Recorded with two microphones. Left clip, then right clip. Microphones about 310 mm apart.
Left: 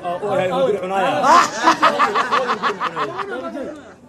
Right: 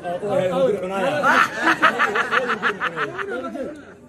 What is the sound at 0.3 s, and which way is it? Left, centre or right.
Speech, centre.